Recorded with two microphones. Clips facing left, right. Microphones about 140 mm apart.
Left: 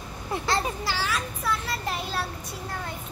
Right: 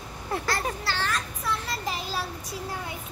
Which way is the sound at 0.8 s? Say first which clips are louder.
Left 1 dB; 10° left (ahead or behind).